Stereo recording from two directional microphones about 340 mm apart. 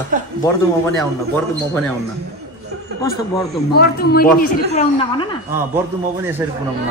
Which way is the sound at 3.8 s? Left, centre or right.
Left.